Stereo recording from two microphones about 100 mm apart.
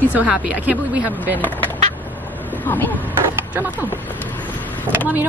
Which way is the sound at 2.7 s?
20° left (ahead or behind).